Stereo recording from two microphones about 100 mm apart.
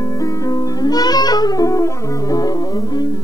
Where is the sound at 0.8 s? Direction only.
40° left (ahead or behind).